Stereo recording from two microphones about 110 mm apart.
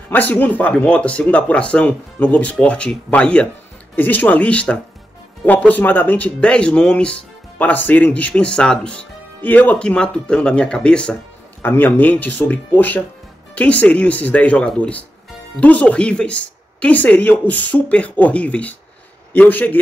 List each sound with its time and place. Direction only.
0.1 s speech: 15° left (ahead or behind)